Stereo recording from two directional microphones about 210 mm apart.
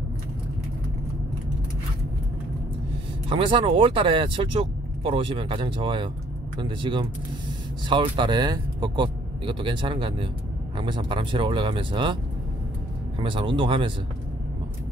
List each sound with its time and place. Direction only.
3.3 s speech: 25° right (ahead or behind)
13.2 s speech: 25° right (ahead or behind)